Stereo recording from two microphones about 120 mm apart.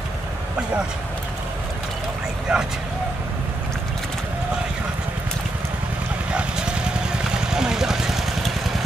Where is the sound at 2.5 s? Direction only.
5° right (ahead or behind).